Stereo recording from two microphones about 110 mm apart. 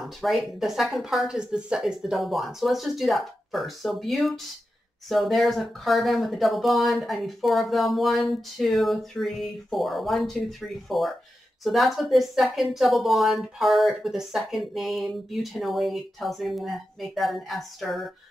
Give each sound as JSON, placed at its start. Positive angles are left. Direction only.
{"t": 0.0, "sound": "a woman's voice", "side_deg": 0}